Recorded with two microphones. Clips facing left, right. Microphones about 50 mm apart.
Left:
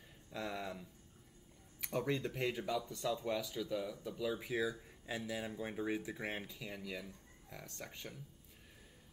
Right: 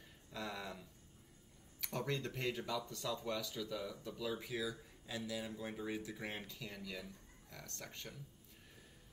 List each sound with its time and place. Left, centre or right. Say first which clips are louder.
0.3 s speech: left 3 dB; centre
4.5 s speech: left 4 dB; left